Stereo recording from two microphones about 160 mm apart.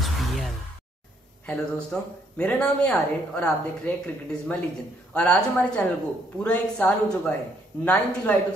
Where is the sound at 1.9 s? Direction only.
5° left (ahead or behind).